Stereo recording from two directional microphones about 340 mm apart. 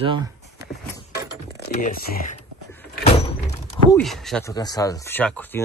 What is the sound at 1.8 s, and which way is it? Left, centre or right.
Speech, left.